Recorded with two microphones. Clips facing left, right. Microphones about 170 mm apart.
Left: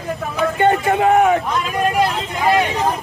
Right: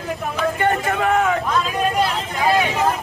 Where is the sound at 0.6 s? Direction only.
20° left (ahead or behind).